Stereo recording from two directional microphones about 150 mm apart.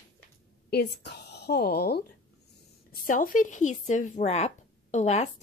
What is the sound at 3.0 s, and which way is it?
Speech, 65° left (ahead or behind).